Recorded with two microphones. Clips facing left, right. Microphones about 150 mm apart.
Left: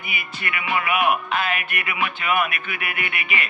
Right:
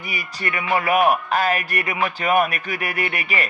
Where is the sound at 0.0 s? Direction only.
40° right (ahead or behind).